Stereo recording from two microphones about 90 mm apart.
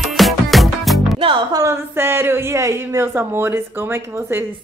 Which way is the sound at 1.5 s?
30° right (ahead or behind).